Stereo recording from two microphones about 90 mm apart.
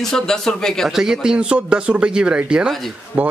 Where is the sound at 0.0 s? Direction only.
5° left (ahead or behind).